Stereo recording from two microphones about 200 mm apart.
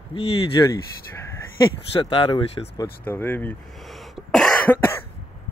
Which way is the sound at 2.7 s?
10° left (ahead or behind).